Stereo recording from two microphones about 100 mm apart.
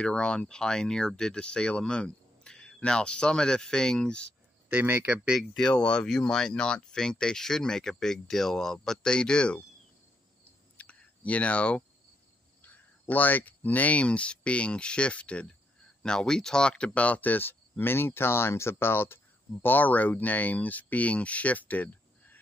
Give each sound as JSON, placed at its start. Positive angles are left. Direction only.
{"t": 0.0, "sound": "speech", "side_deg": 10}
{"t": 4.6, "sound": "speech", "side_deg": -15}
{"t": 5.6, "sound": "speech", "side_deg": 10}
{"t": 10.8, "sound": "a sound", "side_deg": 15}
{"t": 12.6, "sound": "speech", "side_deg": 15}